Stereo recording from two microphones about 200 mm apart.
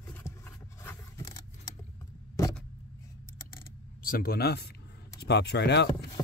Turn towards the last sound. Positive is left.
turn(degrees=55)  # may be behind; listen again after turning